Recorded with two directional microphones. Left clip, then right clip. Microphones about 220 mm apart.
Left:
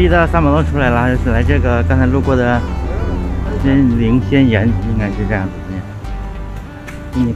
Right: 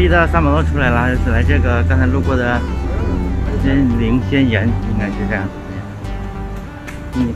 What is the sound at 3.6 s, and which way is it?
Speech, 30° left (ahead or behind).